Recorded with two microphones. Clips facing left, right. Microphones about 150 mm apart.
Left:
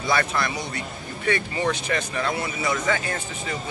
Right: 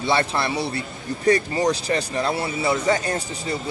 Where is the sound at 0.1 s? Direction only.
30° right (ahead or behind).